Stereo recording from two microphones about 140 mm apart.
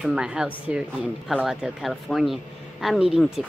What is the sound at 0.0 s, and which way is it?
Speech, 5° right (ahead or behind).